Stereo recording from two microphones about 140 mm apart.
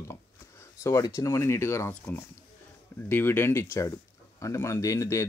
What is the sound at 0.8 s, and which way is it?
Speech, 25° left (ahead or behind).